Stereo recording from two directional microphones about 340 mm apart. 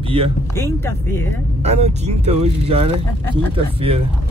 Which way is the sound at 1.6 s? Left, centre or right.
Centre.